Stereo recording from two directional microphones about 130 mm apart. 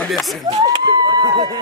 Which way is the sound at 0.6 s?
35° right (ahead or behind).